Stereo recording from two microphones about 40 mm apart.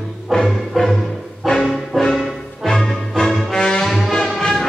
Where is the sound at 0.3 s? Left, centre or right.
Centre.